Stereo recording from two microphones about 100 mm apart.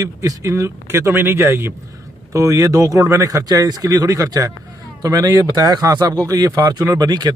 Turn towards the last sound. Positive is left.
turn(degrees=-45)  # may be behind; listen again after turning